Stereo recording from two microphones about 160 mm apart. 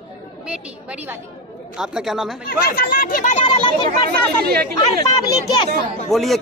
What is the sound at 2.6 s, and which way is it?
Speech, 60° left (ahead or behind).